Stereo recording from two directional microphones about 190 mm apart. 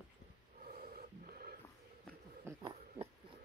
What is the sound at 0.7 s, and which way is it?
Printer, 50° right (ahead or behind).